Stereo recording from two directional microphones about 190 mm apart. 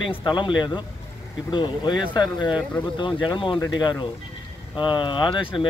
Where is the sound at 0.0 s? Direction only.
25° left (ahead or behind).